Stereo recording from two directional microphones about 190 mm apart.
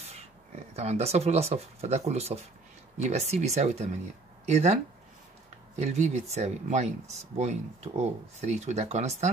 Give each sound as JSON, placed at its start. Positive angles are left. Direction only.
{"t": 0.7, "sound": "speech", "side_deg": -35}
{"t": 5.8, "sound": "speech", "side_deg": -35}